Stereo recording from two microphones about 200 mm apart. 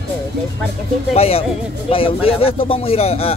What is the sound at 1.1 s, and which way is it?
Speech, 30° left (ahead or behind).